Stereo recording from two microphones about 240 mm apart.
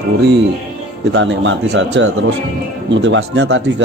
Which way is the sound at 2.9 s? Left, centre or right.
Right.